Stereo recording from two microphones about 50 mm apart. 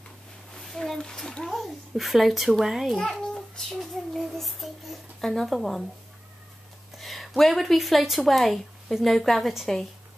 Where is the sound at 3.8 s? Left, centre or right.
Centre.